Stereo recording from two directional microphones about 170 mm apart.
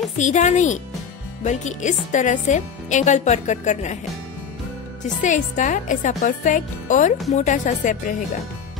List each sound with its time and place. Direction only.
0.2 s speech: 45° left (ahead or behind)
5.0 s speech: 45° left (ahead or behind)